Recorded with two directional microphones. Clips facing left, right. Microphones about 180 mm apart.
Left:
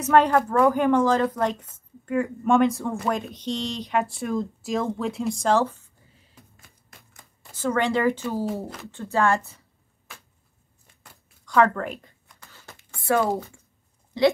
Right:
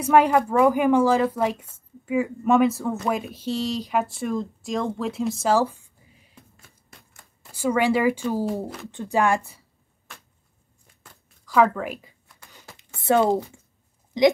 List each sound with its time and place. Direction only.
0.0 s speech: 10° right (ahead or behind)
7.5 s speech: 10° right (ahead or behind)
11.4 s a sound: 5° right (ahead or behind)
13.0 s speech: 25° right (ahead or behind)